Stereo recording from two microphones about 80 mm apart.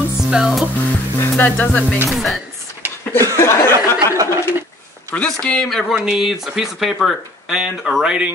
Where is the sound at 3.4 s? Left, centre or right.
Left.